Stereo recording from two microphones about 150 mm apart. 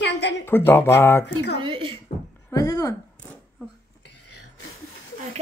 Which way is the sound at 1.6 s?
35° right (ahead or behind).